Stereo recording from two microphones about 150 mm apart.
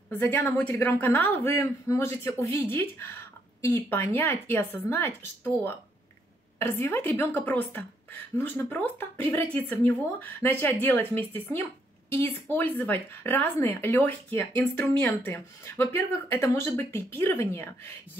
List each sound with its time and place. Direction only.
0.1 s speech: 10° left (ahead or behind)
3.6 s speech: 15° left (ahead or behind)